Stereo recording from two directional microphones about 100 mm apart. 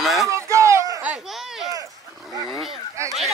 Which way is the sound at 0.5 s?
30° right (ahead or behind).